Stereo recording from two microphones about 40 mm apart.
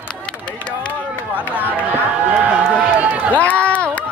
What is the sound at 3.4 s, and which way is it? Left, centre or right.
Run, left.